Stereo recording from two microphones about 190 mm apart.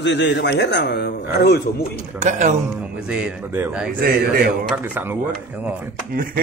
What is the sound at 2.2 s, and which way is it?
Speech, 40° right (ahead or behind).